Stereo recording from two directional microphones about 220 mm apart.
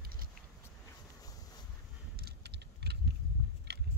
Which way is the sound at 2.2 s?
50° right (ahead or behind).